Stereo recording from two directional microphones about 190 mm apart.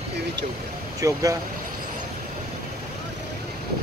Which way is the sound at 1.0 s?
15° right (ahead or behind).